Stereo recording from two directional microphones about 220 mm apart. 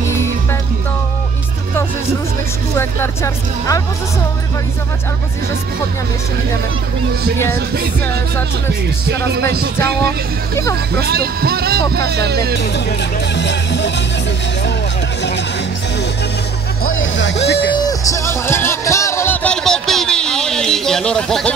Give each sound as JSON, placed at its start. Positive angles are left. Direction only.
{"t": 7.5, "sound": "speech", "side_deg": -45}
{"t": 10.5, "sound": "speech", "side_deg": 15}
{"t": 11.0, "sound": "speech", "side_deg": -45}
{"t": 13.3, "sound": "music", "side_deg": 55}
{"t": 16.9, "sound": "music", "side_deg": 60}
{"t": 17.7, "sound": "music", "side_deg": 15}